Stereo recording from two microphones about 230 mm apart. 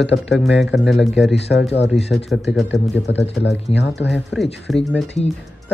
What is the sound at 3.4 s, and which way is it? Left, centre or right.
Speech, left.